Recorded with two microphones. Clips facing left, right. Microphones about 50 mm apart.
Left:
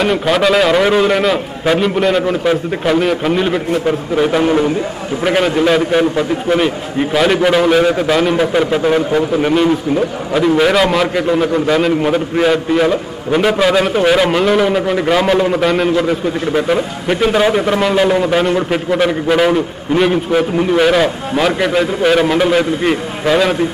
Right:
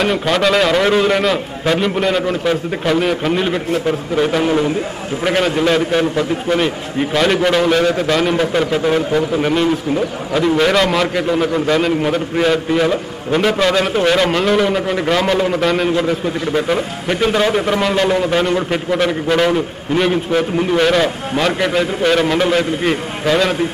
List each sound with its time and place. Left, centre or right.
0.0 s a man's voice: centre